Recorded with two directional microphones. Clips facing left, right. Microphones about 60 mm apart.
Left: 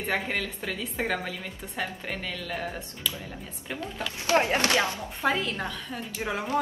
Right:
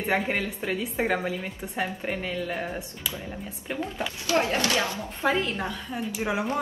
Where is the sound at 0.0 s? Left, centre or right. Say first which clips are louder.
Right 3 dB; centre.